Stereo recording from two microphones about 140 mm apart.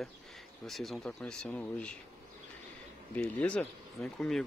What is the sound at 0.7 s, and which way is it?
Speech, centre (ahead or behind).